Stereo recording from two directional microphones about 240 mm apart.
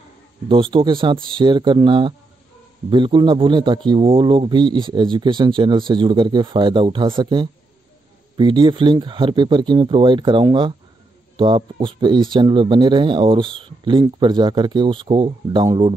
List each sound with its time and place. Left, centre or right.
0.5 s a man's voice: right